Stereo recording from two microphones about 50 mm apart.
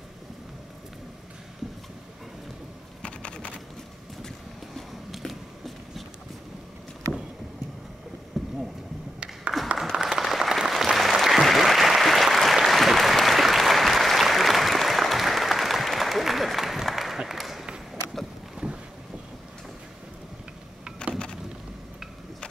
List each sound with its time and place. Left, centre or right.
3.0 s computer keyboard: left
4.7 s a sound: centre
8.3 s boat: centre
9.5 s a sound: centre
9.9 s applause: centre
18.6 s boat: centre
21.1 s boat: centre